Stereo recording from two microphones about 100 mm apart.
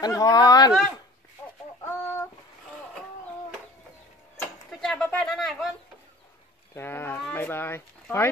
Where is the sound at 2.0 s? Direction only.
25° left (ahead or behind).